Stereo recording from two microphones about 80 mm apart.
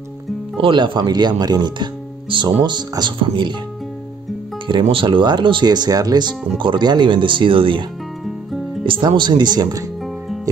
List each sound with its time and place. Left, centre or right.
0.6 s speech: right
3.0 s speech: right
4.6 s speech: right
6.6 s speech: right
8.8 s speech: right